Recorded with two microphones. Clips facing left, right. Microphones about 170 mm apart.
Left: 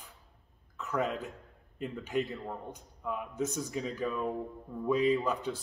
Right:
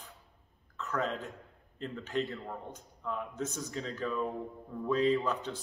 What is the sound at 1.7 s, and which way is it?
Speech, 15° left (ahead or behind).